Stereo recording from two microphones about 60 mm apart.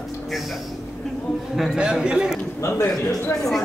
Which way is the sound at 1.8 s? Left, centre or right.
Centre.